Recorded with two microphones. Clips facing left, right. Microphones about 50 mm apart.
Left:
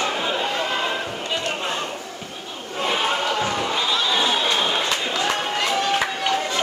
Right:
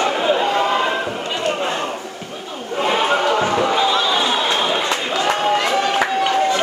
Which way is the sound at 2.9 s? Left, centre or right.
Right.